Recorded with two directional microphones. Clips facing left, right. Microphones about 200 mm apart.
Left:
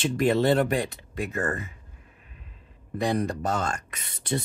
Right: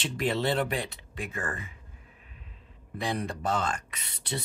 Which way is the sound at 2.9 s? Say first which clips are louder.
Left 6 dB; 45° left (ahead or behind).